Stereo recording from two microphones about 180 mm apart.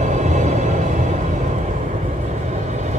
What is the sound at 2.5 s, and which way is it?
Vehicle, 40° right (ahead or behind).